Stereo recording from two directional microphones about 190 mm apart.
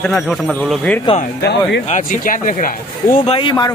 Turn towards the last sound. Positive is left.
turn(degrees=25)  # may be behind; listen again after turning